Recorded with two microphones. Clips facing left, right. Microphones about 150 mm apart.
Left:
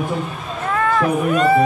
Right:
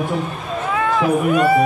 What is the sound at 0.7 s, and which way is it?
Speech, 5° right (ahead or behind).